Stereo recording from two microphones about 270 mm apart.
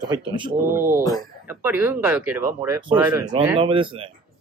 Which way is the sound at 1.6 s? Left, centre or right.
Centre.